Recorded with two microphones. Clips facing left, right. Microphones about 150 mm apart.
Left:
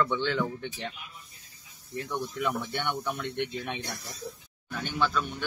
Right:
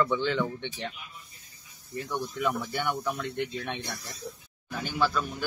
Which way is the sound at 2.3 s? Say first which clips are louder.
Right 2 dB; centre (ahead or behind).